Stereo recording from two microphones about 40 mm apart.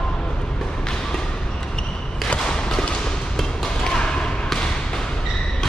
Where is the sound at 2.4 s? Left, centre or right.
Centre.